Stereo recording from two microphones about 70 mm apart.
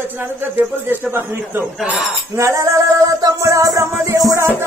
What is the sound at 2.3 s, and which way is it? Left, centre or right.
A man's voice, right.